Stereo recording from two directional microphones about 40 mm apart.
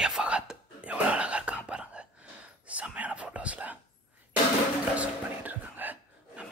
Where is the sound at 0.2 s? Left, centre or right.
Centre.